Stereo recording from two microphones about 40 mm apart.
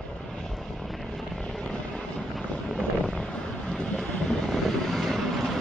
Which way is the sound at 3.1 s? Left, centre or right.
Left.